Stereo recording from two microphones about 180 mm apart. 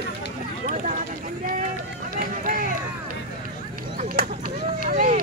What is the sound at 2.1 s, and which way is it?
Run, 50° right (ahead or behind).